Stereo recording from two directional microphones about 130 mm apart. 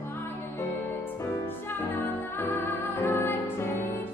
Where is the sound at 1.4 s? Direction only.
15° left (ahead or behind).